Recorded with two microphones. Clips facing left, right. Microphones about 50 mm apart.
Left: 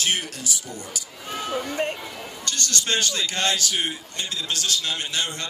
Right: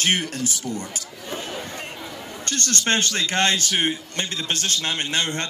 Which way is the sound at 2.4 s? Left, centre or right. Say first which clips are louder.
Right 3 dB; right.